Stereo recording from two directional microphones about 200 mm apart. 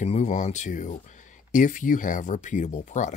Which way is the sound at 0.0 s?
35° left (ahead or behind).